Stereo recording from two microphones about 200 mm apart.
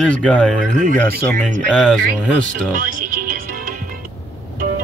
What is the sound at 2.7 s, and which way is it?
Music, 40° right (ahead or behind).